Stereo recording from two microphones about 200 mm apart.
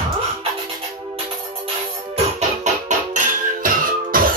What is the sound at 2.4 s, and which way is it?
Music, 40° right (ahead or behind).